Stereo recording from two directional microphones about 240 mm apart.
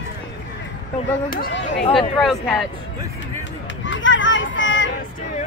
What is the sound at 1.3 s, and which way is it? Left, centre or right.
Speech, left.